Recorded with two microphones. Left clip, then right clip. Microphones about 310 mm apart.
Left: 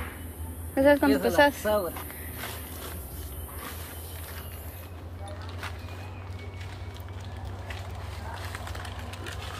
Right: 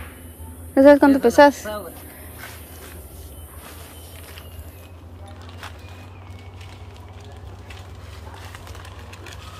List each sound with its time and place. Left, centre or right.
0.7 s speech: centre
1.6 s speech: left